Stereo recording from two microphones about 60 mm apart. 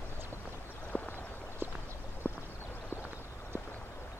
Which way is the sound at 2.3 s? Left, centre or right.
Left.